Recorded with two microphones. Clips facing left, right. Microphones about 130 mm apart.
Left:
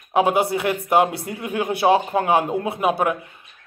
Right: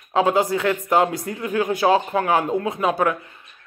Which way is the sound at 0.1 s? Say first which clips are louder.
Even; 15° left (ahead or behind).